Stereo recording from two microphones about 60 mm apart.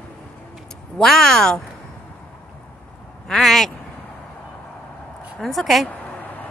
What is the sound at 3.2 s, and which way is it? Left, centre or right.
Speech, centre.